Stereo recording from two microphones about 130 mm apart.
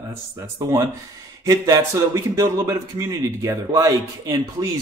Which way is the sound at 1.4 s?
25° right (ahead or behind).